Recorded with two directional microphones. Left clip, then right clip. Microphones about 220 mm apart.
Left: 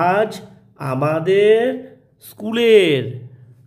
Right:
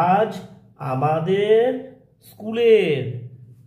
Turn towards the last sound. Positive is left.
turn(degrees=50)  # may be behind; listen again after turning